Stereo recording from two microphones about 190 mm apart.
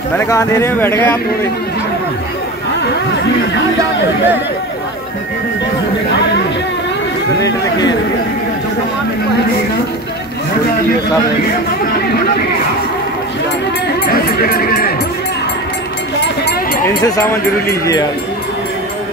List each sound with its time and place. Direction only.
0.2 s speech: 15° left (ahead or behind)
14.0 s speech: 50° left (ahead or behind)
17.0 s speech: 15° left (ahead or behind)